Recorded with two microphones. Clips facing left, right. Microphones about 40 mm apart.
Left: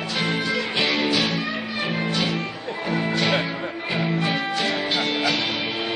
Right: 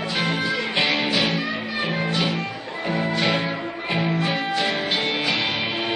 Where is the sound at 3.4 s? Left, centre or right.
Centre.